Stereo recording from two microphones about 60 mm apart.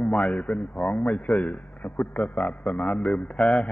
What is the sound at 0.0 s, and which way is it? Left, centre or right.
Speech, centre.